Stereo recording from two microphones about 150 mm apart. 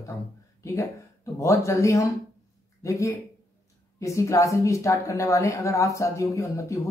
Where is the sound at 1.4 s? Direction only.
20° left (ahead or behind).